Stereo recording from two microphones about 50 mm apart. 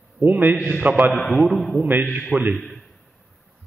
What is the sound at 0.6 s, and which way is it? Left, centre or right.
Speech, centre.